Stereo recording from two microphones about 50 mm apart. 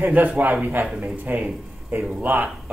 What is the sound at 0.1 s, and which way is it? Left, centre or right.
Speech, right.